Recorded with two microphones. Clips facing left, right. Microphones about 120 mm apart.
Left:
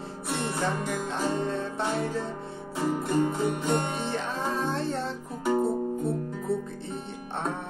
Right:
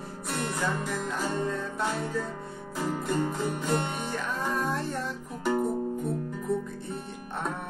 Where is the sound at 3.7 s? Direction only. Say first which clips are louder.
Left 2 dB; 30° left (ahead or behind).